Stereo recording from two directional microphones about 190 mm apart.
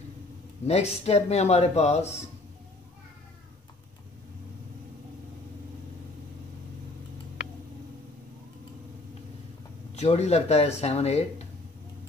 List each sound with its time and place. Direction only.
0.7 s speech: 35° left (ahead or behind)
9.9 s speech: 35° left (ahead or behind)